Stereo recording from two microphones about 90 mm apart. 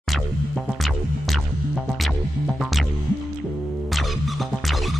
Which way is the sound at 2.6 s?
Centre (ahead or behind).